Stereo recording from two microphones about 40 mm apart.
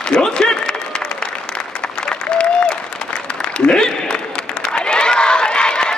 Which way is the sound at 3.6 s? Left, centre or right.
Left.